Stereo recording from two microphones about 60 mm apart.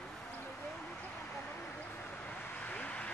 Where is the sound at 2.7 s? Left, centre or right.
Left.